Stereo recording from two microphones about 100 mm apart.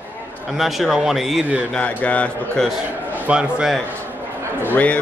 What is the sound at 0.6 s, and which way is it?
Speech, centre (ahead or behind).